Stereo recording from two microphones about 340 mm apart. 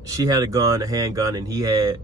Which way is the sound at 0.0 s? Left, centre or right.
Centre.